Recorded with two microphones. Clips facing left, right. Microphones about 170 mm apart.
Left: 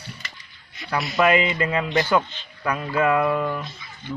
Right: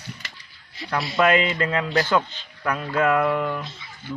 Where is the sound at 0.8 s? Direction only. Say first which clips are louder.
Even; 30° right (ahead or behind).